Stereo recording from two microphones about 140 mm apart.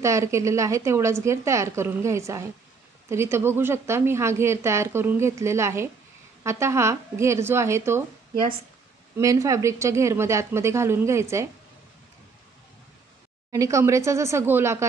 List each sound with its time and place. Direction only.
0.0 s a woman's voice: 20° right (ahead or behind)
9.1 s a woman's voice: 25° right (ahead or behind)
13.5 s a woman's voice: 20° right (ahead or behind)